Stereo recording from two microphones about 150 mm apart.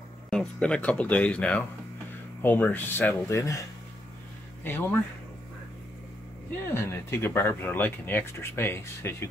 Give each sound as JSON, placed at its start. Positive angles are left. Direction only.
{"t": 0.3, "sound": "speech", "side_deg": 5}
{"t": 4.6, "sound": "speech", "side_deg": 15}
{"t": 6.7, "sound": "speech", "side_deg": 15}